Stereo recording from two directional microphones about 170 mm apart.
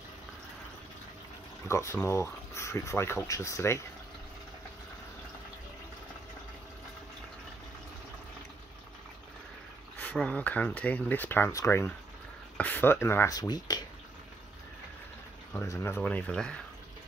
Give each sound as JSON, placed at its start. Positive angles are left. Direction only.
{"t": 1.7, "sound": "speech", "side_deg": 15}
{"t": 9.9, "sound": "speech", "side_deg": 5}
{"t": 15.5, "sound": "speech", "side_deg": 15}